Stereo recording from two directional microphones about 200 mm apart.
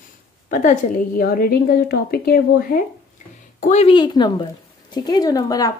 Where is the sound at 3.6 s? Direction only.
35° left (ahead or behind).